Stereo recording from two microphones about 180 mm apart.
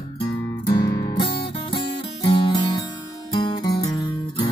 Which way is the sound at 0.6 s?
25° left (ahead or behind).